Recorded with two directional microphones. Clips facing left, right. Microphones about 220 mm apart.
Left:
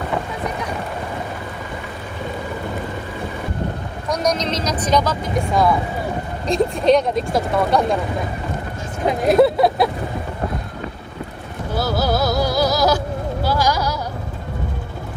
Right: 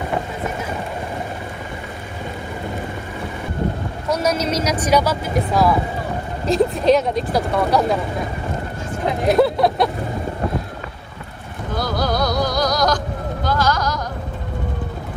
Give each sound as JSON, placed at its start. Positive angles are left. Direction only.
{"t": 0.1, "sound": "boat", "side_deg": -5}
{"t": 4.1, "sound": "speech", "side_deg": -5}
{"t": 9.3, "sound": "speech", "side_deg": 0}
{"t": 11.7, "sound": "music", "side_deg": 5}